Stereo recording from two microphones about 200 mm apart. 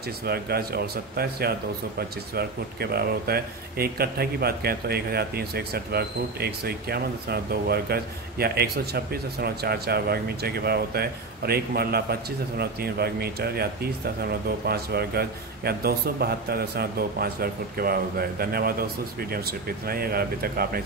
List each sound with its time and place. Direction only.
0.2 s speech: 50° right (ahead or behind)